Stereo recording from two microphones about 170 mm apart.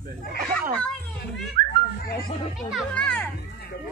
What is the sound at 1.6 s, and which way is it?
Children playing, 60° right (ahead or behind).